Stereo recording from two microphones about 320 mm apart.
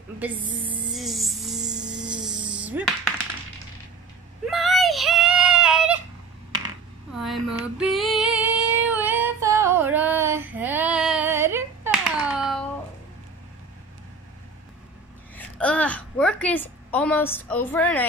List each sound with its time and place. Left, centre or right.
0.4 s music: centre
0.7 s music: centre
4.5 s child singing: centre
7.2 s female singing: centre
15.3 s a sound: centre